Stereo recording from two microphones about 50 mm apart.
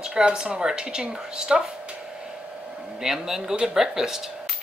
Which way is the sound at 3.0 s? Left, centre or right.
Centre.